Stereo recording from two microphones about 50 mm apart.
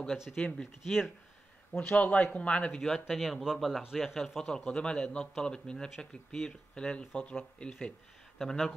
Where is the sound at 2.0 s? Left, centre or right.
Left.